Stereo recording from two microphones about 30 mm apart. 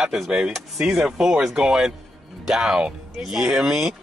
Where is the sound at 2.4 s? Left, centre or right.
Centre.